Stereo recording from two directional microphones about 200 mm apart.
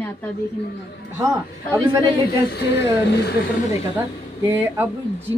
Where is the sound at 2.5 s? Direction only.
55° left (ahead or behind).